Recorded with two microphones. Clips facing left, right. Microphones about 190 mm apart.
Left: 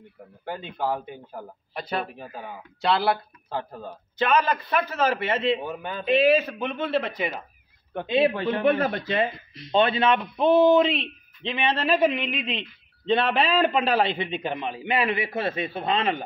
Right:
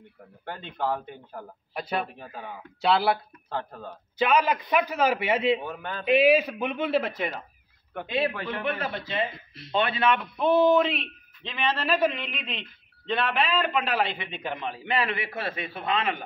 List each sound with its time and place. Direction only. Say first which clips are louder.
0.5 s speech: left 2 dB; 5° left (ahead or behind)
1.7 s a man's voice: even; 5° right (ahead or behind)
2.1 s speech: left 2 dB; 10° left (ahead or behind)
2.8 s speech: even; 5° right (ahead or behind)
3.4 s speech: left 2 dB; 10° left (ahead or behind)
4.2 s a man's voice: even; 10° right (ahead or behind)
5.6 s speech: left 3 dB; 10° left (ahead or behind)
6.0 s a man's voice: even; 10° right (ahead or behind)
7.9 s speech: left 6 dB; 25° left (ahead or behind)
8.6 s speech: left 10 dB; 45° left (ahead or behind)
9.3 s speech: left 2 dB; 5° right (ahead or behind)
9.7 s speech: left 4 dB; 25° left (ahead or behind)
13.0 s speech: left 4 dB; 25° left (ahead or behind)